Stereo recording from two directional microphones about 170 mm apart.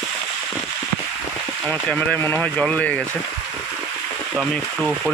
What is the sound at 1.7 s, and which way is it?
Speech, 10° left (ahead or behind).